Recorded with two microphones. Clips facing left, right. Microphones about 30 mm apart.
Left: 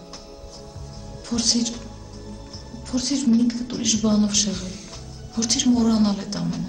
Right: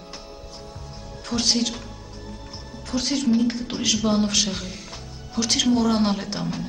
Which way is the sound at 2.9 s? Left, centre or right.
Centre.